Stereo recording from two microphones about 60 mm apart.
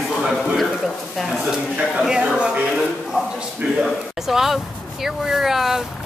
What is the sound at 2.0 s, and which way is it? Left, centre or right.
Speech, centre.